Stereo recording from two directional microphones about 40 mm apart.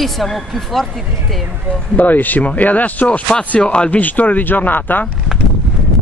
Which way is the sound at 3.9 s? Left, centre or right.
Left.